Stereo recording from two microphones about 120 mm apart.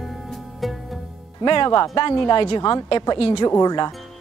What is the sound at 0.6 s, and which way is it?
Music, centre (ahead or behind).